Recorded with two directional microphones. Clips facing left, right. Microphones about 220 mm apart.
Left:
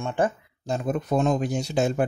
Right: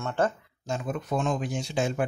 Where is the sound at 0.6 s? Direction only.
40° left (ahead or behind).